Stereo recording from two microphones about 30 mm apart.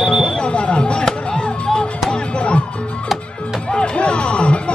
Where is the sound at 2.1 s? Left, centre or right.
Left.